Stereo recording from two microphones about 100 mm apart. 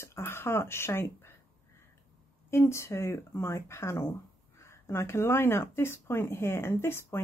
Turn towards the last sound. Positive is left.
turn(degrees=25)  # may be behind; listen again after turning